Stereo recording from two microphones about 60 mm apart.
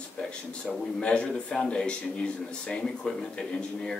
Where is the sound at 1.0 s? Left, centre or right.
Centre.